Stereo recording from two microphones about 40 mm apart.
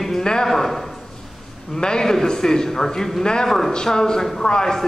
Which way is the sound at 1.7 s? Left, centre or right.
Centre.